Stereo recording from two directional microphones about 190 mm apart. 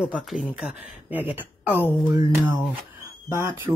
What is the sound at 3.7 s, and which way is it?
Speech, 20° right (ahead or behind).